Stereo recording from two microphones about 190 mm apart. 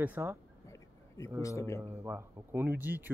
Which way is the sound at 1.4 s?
15° left (ahead or behind).